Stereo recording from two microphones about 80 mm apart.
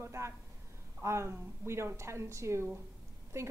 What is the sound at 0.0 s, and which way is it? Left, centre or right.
A woman's voice, right.